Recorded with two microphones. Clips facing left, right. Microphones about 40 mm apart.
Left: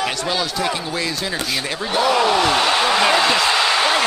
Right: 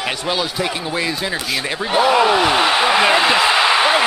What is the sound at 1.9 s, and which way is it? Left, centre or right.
Speech, centre.